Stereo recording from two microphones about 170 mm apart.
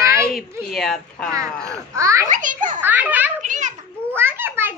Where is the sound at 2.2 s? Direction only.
50° right (ahead or behind).